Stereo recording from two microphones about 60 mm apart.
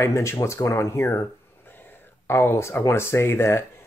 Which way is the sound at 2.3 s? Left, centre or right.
Left.